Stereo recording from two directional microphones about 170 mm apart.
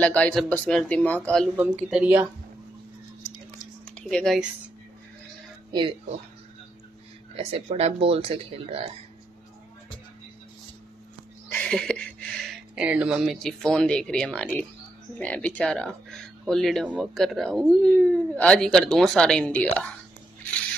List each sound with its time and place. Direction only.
0.0 s a man's voice: 5° left (ahead or behind)
1.6 s speech: 10° right (ahead or behind)
3.8 s speech: 5° left (ahead or behind)
5.7 s speech: 25° right (ahead or behind)
7.3 s speech: 35° right (ahead or behind)
11.5 s a sound: 5° left (ahead or behind)
12.8 s speech: 5° right (ahead or behind)